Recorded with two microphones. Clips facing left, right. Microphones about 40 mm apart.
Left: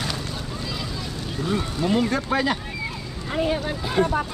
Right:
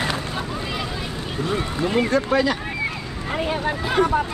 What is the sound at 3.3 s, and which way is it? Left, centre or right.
Speech, right.